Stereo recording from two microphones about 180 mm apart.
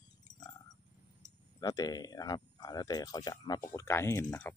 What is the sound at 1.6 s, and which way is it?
Speech, 20° left (ahead or behind).